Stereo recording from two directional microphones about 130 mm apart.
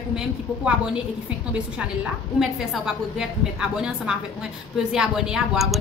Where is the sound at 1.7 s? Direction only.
5° right (ahead or behind).